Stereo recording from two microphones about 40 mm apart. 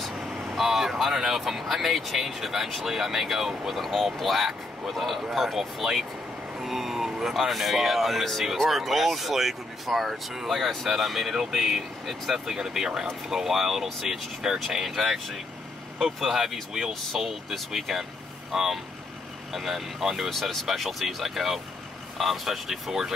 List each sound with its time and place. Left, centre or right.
0.6 s speech: centre
14.9 s speech: centre